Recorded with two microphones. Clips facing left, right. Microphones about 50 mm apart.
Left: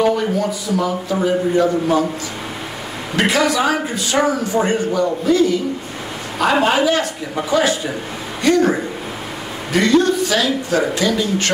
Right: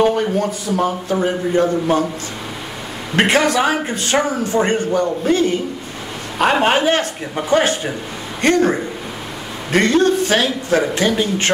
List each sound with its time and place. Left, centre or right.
0.0 s a man's voice: right
3.2 s a man's voice: right
6.6 s a man's voice: right